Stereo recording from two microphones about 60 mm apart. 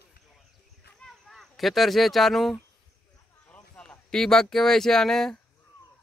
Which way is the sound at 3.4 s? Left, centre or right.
Left.